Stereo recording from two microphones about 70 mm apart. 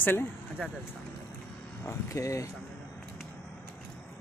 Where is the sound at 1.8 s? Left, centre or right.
Left.